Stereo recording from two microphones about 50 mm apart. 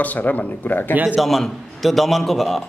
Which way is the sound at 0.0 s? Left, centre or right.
Left.